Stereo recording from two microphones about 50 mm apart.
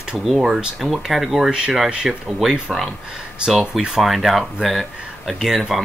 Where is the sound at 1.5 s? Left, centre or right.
Centre.